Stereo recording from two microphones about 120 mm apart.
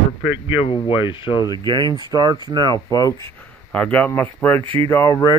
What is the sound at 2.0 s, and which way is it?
Speech, 35° right (ahead or behind).